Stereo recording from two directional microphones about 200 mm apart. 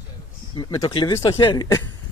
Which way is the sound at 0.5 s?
20° left (ahead or behind).